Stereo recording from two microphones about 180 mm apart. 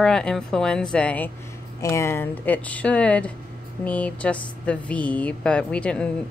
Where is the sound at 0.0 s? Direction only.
5° left (ahead or behind).